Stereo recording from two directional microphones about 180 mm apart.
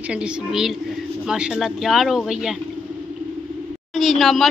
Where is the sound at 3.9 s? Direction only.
Centre (ahead or behind).